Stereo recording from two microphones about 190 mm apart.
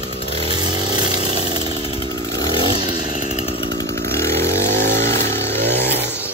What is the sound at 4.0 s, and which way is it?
Chainsaw, 15° left (ahead or behind).